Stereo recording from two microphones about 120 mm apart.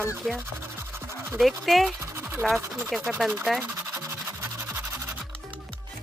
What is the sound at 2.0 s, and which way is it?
Scratch, 20° right (ahead or behind).